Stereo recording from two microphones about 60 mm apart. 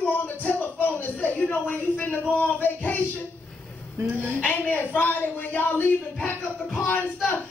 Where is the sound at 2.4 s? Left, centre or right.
Left.